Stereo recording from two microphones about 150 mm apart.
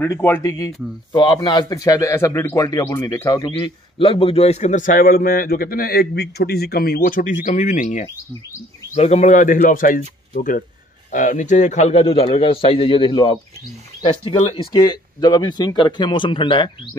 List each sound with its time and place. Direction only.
0.0 s a man's voice: 15° left (ahead or behind); by 7.3 s 70° left (ahead or behind)
7.4 s a man's voice: 55° left (ahead or behind); by 16.9 s 35° left (ahead or behind)